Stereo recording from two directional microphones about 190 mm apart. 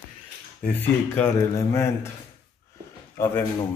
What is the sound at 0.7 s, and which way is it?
Speech, 10° left (ahead or behind).